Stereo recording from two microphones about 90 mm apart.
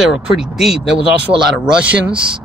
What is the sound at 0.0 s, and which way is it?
Speech, 5° right (ahead or behind).